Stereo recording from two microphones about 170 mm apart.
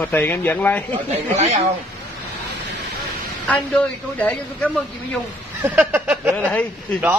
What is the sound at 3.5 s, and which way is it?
A woman's voice, 10° left (ahead or behind).